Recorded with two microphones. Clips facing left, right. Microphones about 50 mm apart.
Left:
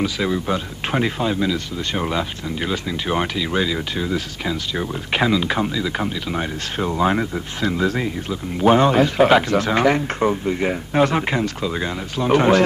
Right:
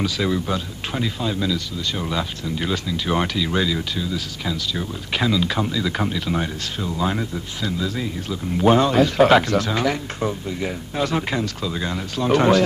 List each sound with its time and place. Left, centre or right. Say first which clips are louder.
0.0 s speech: left 1 dB; centre
1.9 s speech: left 3 dB; left
2.1 s speech: left 1 dB; centre
3.9 s speech: left 3 dB; left; by 6.4 s centre
6.8 s speech: left 5 dB; left
8.7 s speech: left 1 dB; left
9.6 s speech: left 5 dB; left; by 12.5 s centre